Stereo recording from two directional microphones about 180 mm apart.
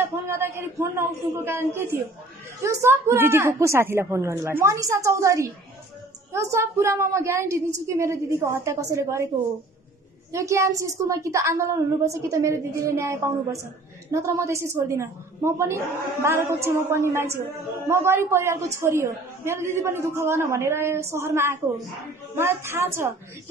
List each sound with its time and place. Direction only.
0.0 s a woman's voice: 15° right (ahead or behind)
10.3 s a woman's voice: 15° right (ahead or behind)